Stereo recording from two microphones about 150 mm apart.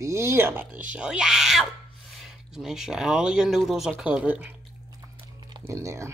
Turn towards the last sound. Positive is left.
turn(degrees=-20)  # may be behind; listen again after turning